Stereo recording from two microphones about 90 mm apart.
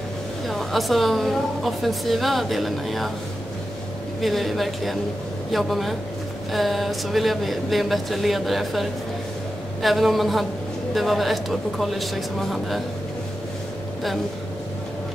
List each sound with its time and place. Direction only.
0.5 s a woman's voice: centre (ahead or behind)
4.2 s a woman's voice: centre (ahead or behind)